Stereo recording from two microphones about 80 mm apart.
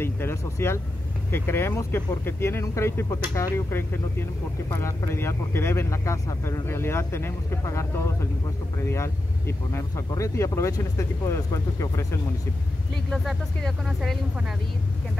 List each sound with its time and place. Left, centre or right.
0.0 s speech: left
13.1 s speech: centre